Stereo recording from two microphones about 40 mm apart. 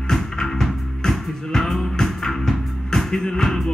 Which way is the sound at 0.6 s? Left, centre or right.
Centre.